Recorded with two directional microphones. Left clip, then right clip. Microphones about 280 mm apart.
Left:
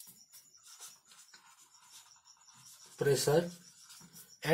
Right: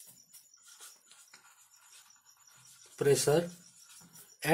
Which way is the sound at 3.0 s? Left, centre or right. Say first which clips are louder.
Right 2 dB; centre.